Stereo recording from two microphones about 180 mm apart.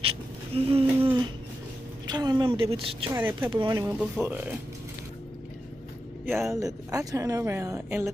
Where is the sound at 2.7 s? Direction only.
30° right (ahead or behind).